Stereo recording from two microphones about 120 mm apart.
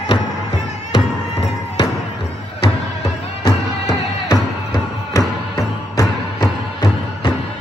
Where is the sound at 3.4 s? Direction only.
30° left (ahead or behind).